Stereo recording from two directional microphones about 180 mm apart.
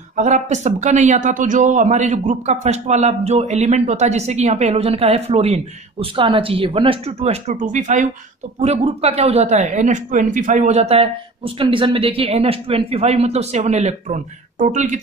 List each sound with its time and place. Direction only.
0.1 s speech: 40° right (ahead or behind)